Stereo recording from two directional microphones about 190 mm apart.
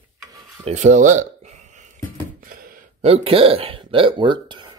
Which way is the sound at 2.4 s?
50° right (ahead or behind).